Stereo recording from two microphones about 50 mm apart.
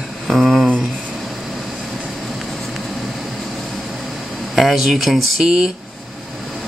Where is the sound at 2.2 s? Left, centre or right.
Centre.